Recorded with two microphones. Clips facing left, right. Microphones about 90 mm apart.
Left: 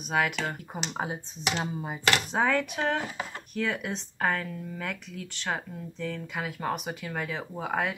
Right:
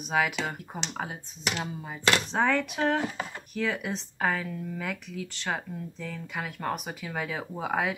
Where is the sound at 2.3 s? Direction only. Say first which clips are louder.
Even; centre (ahead or behind).